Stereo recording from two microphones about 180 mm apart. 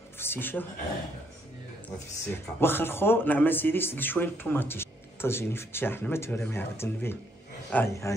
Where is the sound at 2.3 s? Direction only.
10° left (ahead or behind).